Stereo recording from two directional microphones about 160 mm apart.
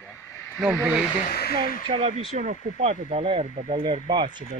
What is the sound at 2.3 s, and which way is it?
Speech, 50° right (ahead or behind).